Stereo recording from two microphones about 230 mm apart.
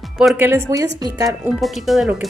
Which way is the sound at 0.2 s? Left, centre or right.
Centre.